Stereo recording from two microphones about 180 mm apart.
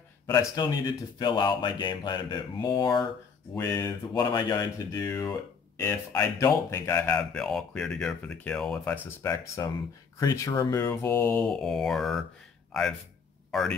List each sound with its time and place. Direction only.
0.3 s speech: 20° left (ahead or behind); by 13.7 s centre (ahead or behind)